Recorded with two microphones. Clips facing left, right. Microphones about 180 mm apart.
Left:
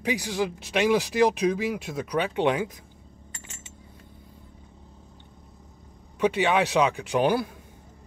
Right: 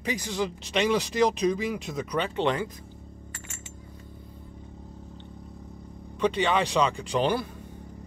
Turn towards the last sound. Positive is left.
turn(degrees=10)  # may be behind; listen again after turning